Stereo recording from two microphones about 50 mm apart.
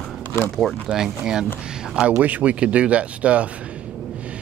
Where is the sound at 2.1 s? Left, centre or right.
Right.